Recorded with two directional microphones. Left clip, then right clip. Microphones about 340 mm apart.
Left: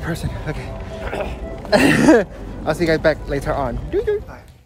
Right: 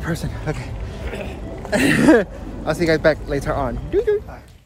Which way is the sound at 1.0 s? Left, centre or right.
Centre.